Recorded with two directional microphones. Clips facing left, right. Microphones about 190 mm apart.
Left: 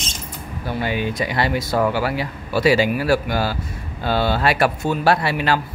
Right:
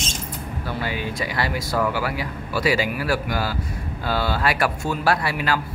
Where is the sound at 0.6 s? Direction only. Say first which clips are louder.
Left 5 dB; 20° left (ahead or behind).